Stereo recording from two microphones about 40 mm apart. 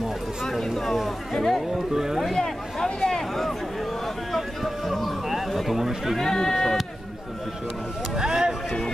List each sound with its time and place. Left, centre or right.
1.3 s speech: centre
2.3 s speech: centre
4.3 s a sound: centre
6.1 s speech: centre
8.2 s speech: centre